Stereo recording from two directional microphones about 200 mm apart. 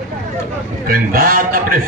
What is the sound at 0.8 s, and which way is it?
A man's voice, 45° right (ahead or behind).